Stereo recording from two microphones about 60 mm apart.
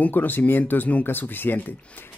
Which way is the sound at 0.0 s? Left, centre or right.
Left.